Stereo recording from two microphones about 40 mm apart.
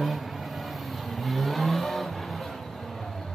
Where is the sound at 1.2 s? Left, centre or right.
Centre.